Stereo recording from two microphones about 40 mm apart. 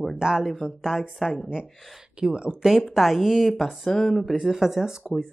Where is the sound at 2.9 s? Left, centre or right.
Centre.